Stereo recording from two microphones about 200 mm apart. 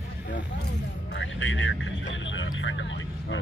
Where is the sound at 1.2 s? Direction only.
65° left (ahead or behind).